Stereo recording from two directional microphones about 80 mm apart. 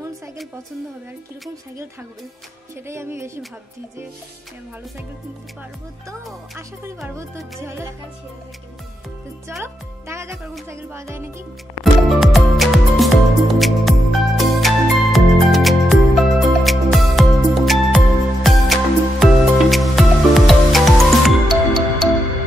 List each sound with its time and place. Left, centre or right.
2.9 s music: right
7.2 s music: right
9.6 s music: right
10.3 s speech: centre
10.7 s music: right
11.8 s music: centre